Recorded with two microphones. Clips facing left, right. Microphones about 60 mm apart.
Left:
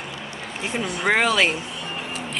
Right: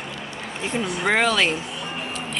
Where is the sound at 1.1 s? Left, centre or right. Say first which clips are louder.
Left 1 dB; centre.